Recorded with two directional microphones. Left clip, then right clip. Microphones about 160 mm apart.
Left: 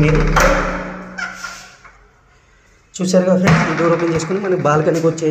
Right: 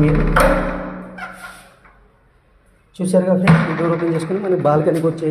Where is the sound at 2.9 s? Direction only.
10° right (ahead or behind).